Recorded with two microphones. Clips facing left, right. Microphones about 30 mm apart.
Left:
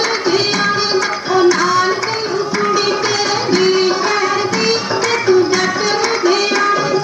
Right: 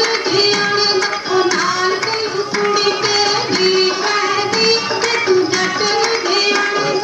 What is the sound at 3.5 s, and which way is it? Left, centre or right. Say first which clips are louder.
Music: left 5 dB; right.